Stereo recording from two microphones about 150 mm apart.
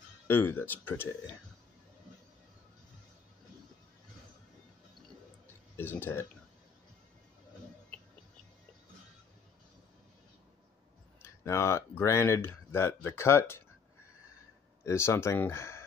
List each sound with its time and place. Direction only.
0.3 s speech: 15° left (ahead or behind)
5.8 s speech: 15° left (ahead or behind)
11.2 s speech: 20° left (ahead or behind)
14.9 s speech: 15° left (ahead or behind)